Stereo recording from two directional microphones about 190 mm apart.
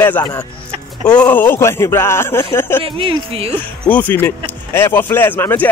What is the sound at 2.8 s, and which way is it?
Speech, 30° right (ahead or behind).